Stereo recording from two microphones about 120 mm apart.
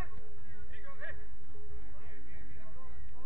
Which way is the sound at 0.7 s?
15° right (ahead or behind).